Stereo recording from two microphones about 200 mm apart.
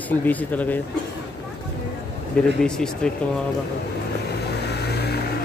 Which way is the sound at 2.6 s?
5° left (ahead or behind).